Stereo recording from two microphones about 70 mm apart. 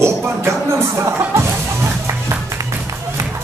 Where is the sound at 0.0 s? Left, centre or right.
Right.